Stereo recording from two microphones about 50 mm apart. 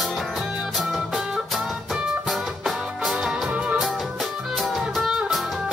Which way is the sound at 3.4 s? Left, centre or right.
Right.